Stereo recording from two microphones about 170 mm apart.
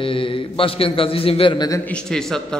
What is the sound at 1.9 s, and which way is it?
Speech, 5° left (ahead or behind).